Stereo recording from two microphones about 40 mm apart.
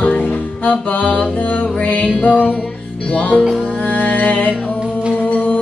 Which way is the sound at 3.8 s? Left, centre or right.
Left.